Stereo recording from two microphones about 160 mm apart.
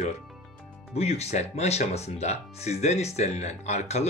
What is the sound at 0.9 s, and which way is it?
Speech, 40° left (ahead or behind).